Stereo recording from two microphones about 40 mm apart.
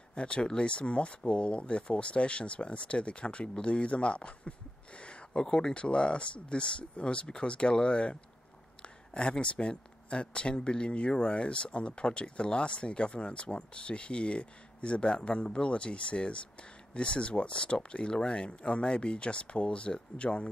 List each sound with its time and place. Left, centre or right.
0.1 s speech: left